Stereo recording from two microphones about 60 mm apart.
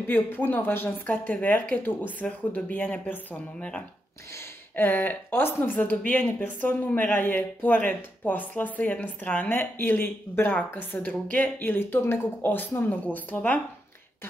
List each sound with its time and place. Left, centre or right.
0.0 s speech: left
4.7 s speech: left